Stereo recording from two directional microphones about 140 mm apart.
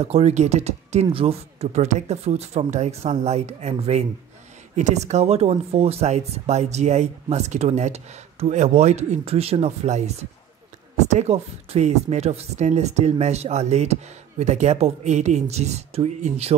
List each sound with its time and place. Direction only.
0.0 s speech: 50° right (ahead or behind)